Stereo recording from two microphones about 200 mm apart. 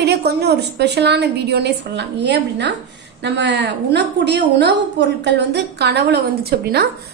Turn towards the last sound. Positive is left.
turn(degrees=-50)  # may be behind; listen again after turning